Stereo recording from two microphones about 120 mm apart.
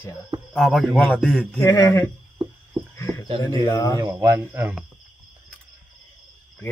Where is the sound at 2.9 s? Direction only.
25° left (ahead or behind).